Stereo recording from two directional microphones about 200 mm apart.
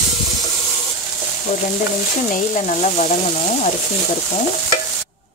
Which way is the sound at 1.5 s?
30° left (ahead or behind).